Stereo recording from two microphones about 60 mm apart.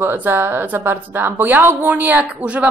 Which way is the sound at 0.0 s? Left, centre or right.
Right.